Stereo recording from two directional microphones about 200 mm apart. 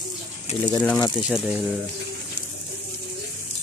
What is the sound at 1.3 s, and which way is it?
Speech, centre (ahead or behind).